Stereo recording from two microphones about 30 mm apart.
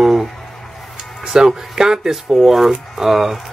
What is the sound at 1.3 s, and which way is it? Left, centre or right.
Speech, right.